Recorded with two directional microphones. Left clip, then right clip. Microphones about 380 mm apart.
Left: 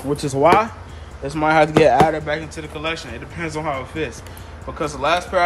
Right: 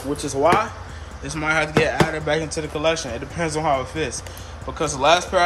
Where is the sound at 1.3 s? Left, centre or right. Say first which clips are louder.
Left 5 dB; centre.